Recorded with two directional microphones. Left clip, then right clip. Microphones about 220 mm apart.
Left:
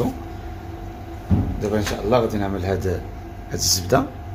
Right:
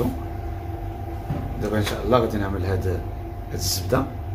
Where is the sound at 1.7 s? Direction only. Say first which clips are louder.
Left 1 dB; 25° left (ahead or behind).